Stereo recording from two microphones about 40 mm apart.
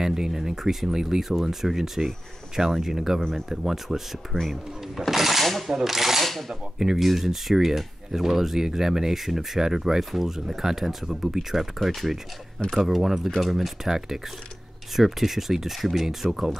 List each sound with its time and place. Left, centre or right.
0.0 s speech: centre
3.2 s speech: centre
3.4 s speech: centre
4.3 s speech: left
5.1 s speech: centre